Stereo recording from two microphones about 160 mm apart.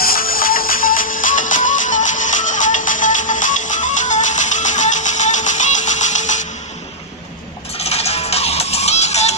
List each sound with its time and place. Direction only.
0.0 s music: 65° left (ahead or behind); by 6.4 s 50° left (ahead or behind)
7.8 s music: 40° left (ahead or behind)